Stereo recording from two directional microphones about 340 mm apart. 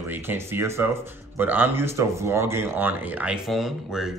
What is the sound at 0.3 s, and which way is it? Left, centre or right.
A man's voice, centre.